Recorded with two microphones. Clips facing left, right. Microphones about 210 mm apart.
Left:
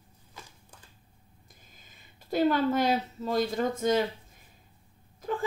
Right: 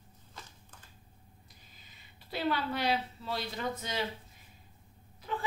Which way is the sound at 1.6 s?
45° left (ahead or behind).